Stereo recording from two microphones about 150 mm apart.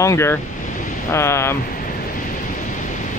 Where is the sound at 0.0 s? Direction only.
20° left (ahead or behind).